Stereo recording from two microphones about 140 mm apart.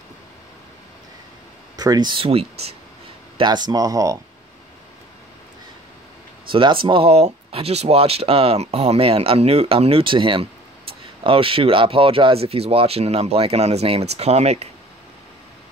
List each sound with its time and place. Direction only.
1.8 s speech: 30° right (ahead or behind)
3.3 s speech: 30° right (ahead or behind)
6.5 s speech: 35° right (ahead or behind)